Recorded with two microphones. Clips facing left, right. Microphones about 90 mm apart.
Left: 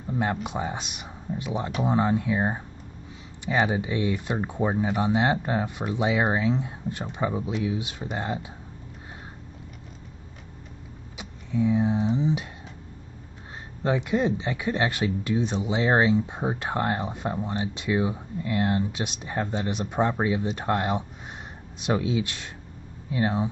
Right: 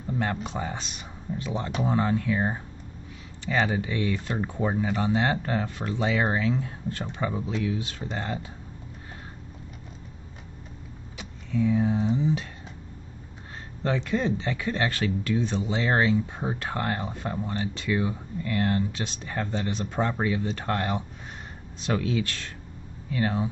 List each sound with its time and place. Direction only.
0.0 s speech: 15° left (ahead or behind)
11.1 s speech: 20° left (ahead or behind)
13.8 s speech: 15° left (ahead or behind)